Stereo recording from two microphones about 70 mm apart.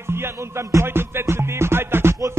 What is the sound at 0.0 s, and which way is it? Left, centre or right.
Music, right.